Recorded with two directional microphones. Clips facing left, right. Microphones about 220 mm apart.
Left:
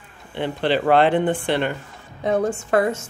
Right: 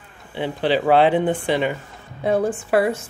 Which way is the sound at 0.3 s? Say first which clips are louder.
Right 1 dB; 10° right (ahead or behind).